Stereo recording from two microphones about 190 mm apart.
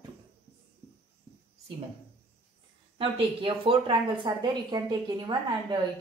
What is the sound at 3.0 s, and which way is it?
A woman's voice, 30° right (ahead or behind).